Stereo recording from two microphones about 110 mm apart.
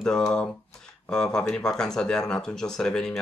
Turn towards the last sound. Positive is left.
turn(degrees=5)  # may be behind; listen again after turning